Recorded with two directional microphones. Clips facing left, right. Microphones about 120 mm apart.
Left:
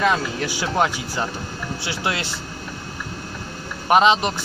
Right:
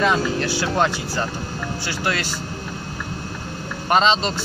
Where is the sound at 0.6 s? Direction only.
15° left (ahead or behind).